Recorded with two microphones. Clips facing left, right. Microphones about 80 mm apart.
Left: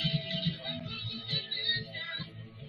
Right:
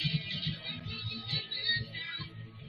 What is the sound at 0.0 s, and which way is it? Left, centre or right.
Music, left.